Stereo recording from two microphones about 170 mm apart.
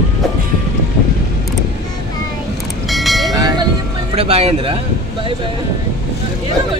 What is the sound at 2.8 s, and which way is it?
Vehicle, centre (ahead or behind).